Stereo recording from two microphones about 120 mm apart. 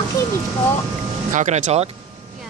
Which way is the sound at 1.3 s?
80° right.